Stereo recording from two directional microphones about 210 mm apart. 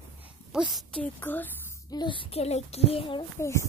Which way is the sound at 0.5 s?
Centre (ahead or behind).